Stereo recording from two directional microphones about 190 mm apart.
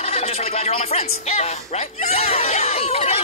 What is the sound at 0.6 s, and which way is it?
Speech, 35° left (ahead or behind).